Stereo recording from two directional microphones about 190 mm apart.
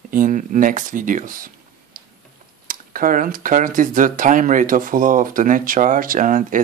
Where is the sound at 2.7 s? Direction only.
45° right (ahead or behind).